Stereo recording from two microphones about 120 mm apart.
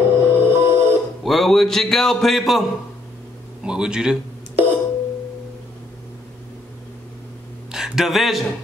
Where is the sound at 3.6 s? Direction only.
5° right (ahead or behind).